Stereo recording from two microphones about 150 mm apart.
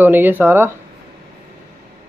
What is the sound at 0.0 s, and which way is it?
Speech, 10° right (ahead or behind).